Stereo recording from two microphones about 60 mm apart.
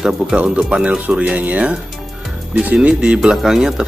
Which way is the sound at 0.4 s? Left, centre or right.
Centre.